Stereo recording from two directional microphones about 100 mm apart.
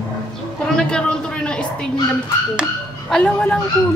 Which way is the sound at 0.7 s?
10° left (ahead or behind).